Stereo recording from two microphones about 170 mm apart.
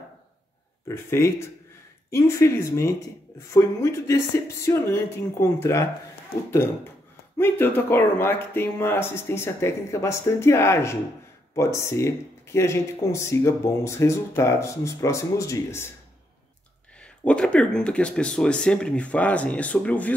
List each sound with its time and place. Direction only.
0.8 s speech: 15° left (ahead or behind)
7.3 s speech: 15° left (ahead or behind)
17.0 s speech: 5° left (ahead or behind)